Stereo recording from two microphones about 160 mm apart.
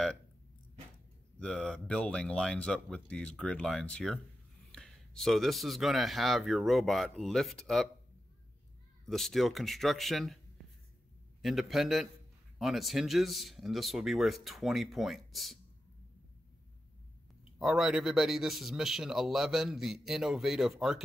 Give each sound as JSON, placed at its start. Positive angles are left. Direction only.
{"t": 1.4, "sound": "a man's voice", "side_deg": 5}
{"t": 9.0, "sound": "a man's voice", "side_deg": 0}
{"t": 11.4, "sound": "a man's voice", "side_deg": 0}
{"t": 17.6, "sound": "a man's voice", "side_deg": 0}